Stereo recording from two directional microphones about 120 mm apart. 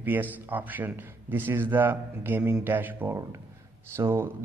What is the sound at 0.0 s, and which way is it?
A man's voice, 15° right (ahead or behind).